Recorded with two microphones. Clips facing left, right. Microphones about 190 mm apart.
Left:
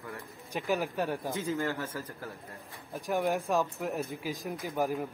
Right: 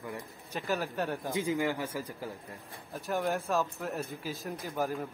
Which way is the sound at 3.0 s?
15° left (ahead or behind).